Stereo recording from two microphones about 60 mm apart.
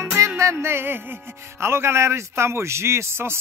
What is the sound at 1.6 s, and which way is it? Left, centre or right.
Speech, right.